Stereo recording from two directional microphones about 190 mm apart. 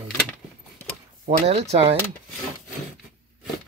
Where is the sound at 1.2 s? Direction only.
35° right (ahead or behind).